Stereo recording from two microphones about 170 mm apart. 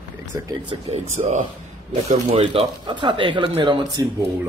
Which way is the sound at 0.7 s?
40° right (ahead or behind).